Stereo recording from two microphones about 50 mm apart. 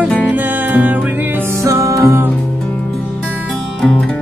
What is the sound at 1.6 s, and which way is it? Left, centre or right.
Music, right.